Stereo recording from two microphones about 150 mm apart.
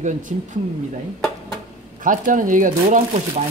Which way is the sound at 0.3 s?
50° right (ahead or behind).